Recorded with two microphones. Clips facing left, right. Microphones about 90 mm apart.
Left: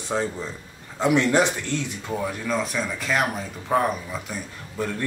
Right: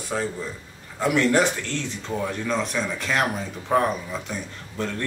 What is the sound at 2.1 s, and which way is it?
Speech, 5° left (ahead or behind).